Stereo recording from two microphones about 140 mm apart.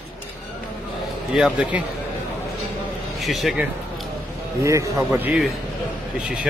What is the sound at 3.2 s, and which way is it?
Speech, centre (ahead or behind).